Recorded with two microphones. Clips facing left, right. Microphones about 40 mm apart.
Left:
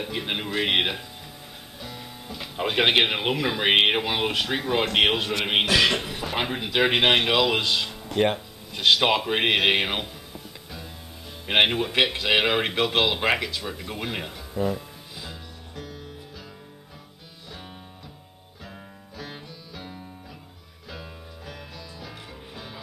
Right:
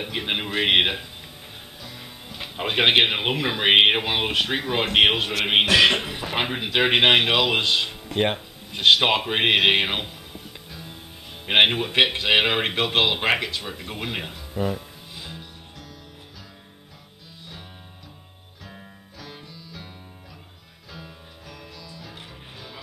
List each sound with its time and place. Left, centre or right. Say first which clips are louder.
0.0 s a man's voice: right 2 dB; right
11.4 s a man's voice: right 2 dB; centre
19.1 s music: left 3 dB; centre